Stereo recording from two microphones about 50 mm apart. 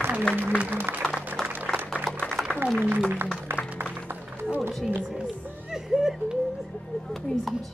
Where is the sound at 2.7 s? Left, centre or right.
Right.